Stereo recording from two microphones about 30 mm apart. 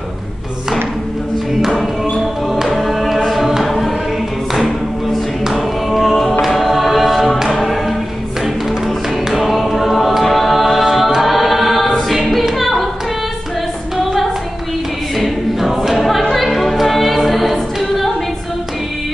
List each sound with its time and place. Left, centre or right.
1.5 s music: centre
2.4 s music: centre
3.3 s chant: centre
5.5 s choir: centre
8.4 s music: centre
10.2 s a capella: centre
11.2 s choir: centre
12.5 s a sound: centre
15.1 s choir: centre
16.8 s a capella: centre